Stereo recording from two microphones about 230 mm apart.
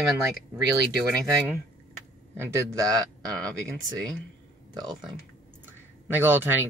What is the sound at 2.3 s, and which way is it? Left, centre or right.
Speech, centre.